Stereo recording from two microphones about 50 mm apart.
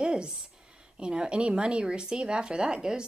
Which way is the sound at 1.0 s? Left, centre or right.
Centre.